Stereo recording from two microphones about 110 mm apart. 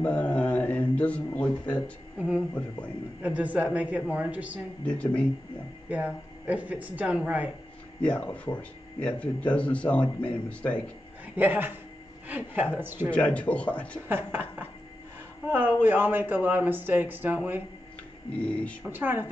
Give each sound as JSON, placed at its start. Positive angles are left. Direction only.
{"t": 0.0, "sound": "a sound", "side_deg": 15}
{"t": 2.1, "sound": "speech", "side_deg": -10}
{"t": 4.8, "sound": "speech", "side_deg": 10}
{"t": 5.9, "sound": "speech", "side_deg": -10}
{"t": 8.0, "sound": "speech", "side_deg": 10}
{"t": 11.3, "sound": "speech", "side_deg": -15}
{"t": 13.1, "sound": "speech", "side_deg": 10}
{"t": 14.0, "sound": "speech", "side_deg": -20}
{"t": 18.3, "sound": "speech", "side_deg": 10}
{"t": 18.9, "sound": "speech", "side_deg": -20}